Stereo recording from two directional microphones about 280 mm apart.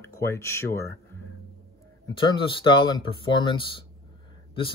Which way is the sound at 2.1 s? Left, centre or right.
Centre.